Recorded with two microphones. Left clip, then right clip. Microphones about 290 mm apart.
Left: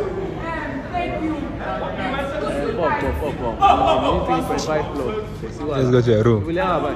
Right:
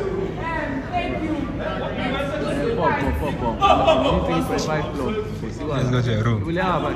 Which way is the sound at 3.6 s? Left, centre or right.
Centre.